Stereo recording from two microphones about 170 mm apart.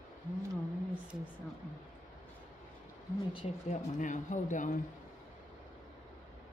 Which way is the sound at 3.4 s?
45° left (ahead or behind).